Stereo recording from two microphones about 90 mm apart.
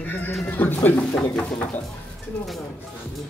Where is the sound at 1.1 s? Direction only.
10° left (ahead or behind).